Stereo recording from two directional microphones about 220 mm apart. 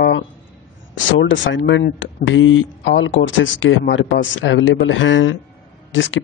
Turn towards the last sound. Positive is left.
turn(degrees=60)  # may be behind; listen again after turning